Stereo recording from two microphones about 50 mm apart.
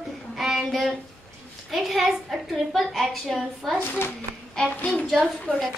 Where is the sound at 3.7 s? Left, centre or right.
Left.